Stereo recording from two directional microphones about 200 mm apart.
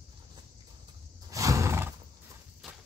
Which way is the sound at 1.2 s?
15° right (ahead or behind).